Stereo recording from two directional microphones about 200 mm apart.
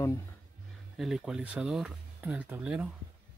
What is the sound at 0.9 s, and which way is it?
Speech, centre (ahead or behind).